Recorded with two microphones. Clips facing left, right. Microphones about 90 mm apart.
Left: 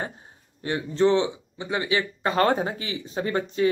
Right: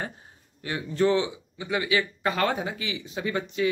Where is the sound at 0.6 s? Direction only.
30° left (ahead or behind).